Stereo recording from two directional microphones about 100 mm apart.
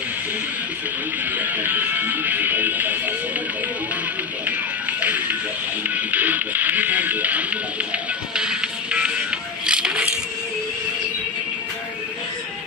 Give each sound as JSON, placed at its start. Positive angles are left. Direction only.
{"t": 1.4, "sound": "music", "side_deg": -20}
{"t": 5.0, "sound": "music", "side_deg": -15}
{"t": 5.9, "sound": "speech", "side_deg": -15}
{"t": 9.7, "sound": "music", "side_deg": -10}